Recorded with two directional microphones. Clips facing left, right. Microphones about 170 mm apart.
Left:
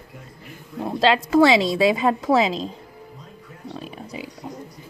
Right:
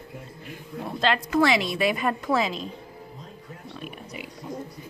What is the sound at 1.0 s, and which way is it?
A woman's voice, 90° left.